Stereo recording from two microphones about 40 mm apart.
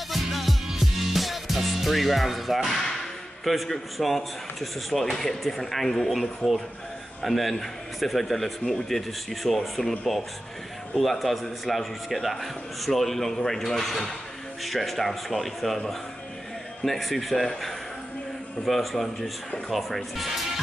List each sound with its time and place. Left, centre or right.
0.1 s music: centre
3.4 s a man's voice: centre
16.8 s a man's voice: centre